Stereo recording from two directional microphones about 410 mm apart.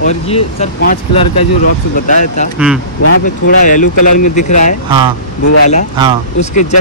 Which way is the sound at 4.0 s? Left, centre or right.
Left.